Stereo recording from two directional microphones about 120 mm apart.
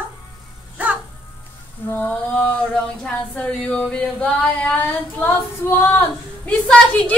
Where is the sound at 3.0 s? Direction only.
10° left (ahead or behind).